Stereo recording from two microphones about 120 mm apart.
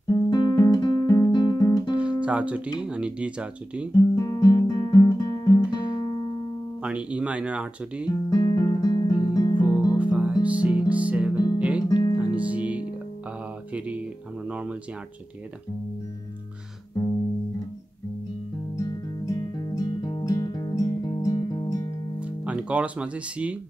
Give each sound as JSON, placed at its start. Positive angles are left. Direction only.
{"t": 0.3, "sound": "guitar", "side_deg": 35}
{"t": 2.0, "sound": "music", "side_deg": -10}
{"t": 2.8, "sound": "speech", "side_deg": -10}
{"t": 3.9, "sound": "guitar", "side_deg": 30}
{"t": 6.8, "sound": "speech", "side_deg": -10}
{"t": 8.1, "sound": "music", "side_deg": 35}
{"t": 9.9, "sound": "music", "side_deg": -10}
{"t": 11.9, "sound": "music", "side_deg": 35}
{"t": 12.2, "sound": "music", "side_deg": -10}
{"t": 18.8, "sound": "music", "side_deg": 30}
{"t": 22.2, "sound": "speech", "side_deg": -10}